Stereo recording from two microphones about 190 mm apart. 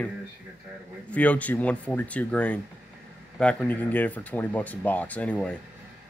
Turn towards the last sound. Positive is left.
turn(degrees=5)  # may be behind; listen again after turning